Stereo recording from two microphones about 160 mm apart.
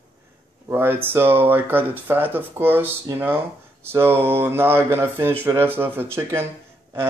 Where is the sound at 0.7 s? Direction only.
15° right (ahead or behind).